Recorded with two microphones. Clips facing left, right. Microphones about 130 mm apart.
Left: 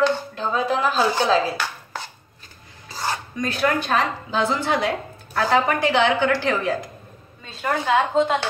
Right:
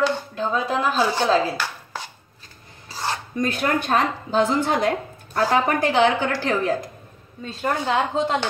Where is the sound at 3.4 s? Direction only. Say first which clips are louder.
Even; 55° right (ahead or behind).